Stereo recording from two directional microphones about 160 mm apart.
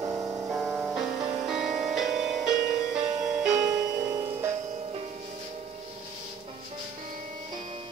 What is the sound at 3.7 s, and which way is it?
Music, 20° right (ahead or behind).